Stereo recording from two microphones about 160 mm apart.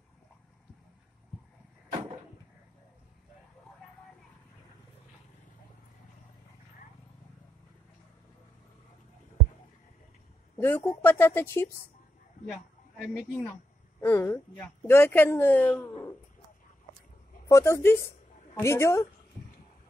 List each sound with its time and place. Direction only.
10.6 s speech: 15° left (ahead or behind)
12.4 s a man's voice: 5° right (ahead or behind)
14.0 s speech: 15° left (ahead or behind)
17.5 s speech: 20° left (ahead or behind)